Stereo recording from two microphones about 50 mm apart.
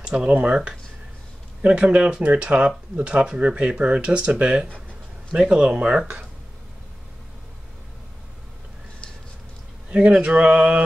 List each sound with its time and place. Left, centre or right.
0.0 s speech: centre
1.6 s speech: right
9.8 s speech: right